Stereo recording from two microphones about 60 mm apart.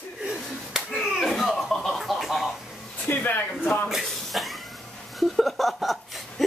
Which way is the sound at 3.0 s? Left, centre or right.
Left.